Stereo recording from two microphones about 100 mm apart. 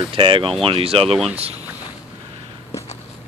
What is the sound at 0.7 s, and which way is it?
Speech, 70° right (ahead or behind).